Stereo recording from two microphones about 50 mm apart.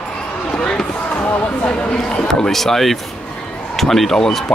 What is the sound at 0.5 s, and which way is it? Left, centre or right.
Basketball bounce, left.